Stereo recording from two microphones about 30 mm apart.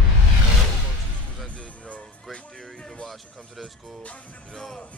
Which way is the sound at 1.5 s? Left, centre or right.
Left.